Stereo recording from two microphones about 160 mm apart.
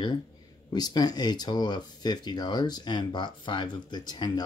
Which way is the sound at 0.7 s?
25° left (ahead or behind).